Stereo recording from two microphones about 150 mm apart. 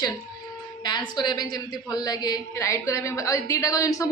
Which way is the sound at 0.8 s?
30° left (ahead or behind).